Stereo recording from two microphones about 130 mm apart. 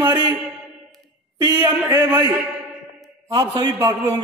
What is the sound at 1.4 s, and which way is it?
A man's voice, 15° right (ahead or behind).